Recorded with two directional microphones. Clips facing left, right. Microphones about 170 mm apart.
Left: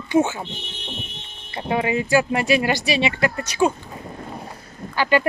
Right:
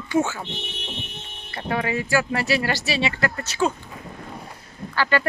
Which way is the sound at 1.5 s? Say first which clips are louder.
Left 3 dB; 20° left (ahead or behind).